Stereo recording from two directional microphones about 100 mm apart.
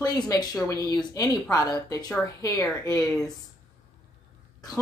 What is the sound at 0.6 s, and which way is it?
Speech, 30° left (ahead or behind).